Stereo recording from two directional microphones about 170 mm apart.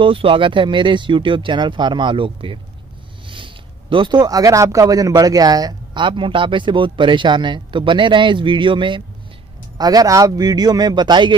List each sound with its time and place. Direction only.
0.0 s speech: 30° right (ahead or behind)